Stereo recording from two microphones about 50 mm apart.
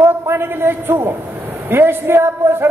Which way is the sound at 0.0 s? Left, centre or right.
Right.